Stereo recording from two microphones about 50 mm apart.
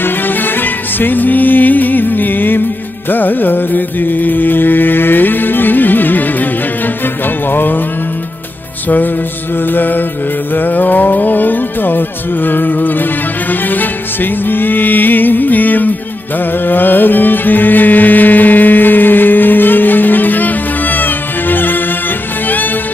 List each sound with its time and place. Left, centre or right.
0.0 s music: left
7.5 s music: left
8.8 s music: left